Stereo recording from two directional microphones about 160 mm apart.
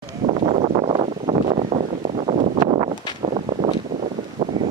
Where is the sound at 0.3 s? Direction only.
45° right (ahead or behind).